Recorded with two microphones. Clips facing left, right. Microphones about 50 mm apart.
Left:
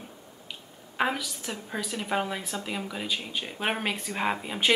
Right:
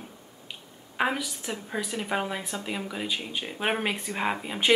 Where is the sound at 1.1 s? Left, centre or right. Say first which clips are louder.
Right 2 dB; centre.